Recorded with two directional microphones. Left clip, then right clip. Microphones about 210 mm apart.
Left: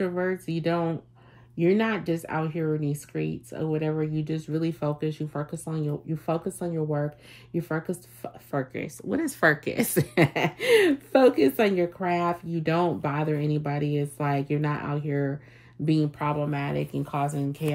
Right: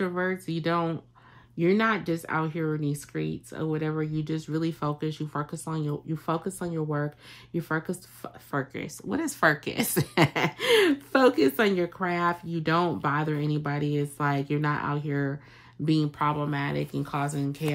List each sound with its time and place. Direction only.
0.0 s speech: 25° right (ahead or behind)